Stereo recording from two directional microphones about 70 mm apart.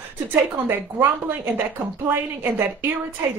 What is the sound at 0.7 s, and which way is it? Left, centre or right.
A woman's voice, right.